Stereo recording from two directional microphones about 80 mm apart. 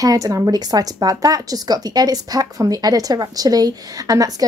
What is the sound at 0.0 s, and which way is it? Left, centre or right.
A woman's voice, right.